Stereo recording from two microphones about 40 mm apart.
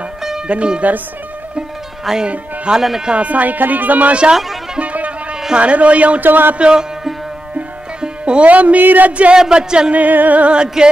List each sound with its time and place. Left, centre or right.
0.5 s a man's voice: right
2.2 s speech: right
2.7 s speech: centre
3.1 s speech: right
4.7 s music: right
5.5 s a man's voice: right
6.2 s speech: right
6.6 s speech: right
8.0 s music: right
8.5 s speech: right
9.3 s speech: right
9.9 s a man's voice: right
10.8 s speech: centre